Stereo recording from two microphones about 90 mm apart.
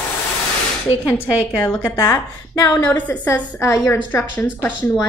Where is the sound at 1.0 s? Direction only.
25° left (ahead or behind).